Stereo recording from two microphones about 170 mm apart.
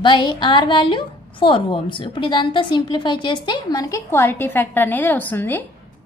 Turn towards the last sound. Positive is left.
turn(degrees=10)  # may be behind; listen again after turning